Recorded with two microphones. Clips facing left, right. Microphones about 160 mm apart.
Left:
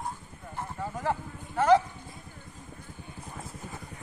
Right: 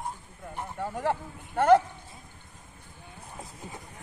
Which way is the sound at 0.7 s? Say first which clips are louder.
Right 2 dB; 65° right (ahead or behind).